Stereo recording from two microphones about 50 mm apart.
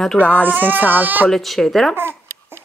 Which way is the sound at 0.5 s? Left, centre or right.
Right.